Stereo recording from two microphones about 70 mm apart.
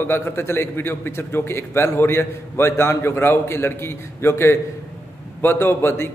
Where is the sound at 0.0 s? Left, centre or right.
Left.